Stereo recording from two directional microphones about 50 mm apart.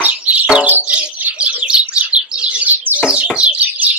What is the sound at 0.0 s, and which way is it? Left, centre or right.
Bird, right.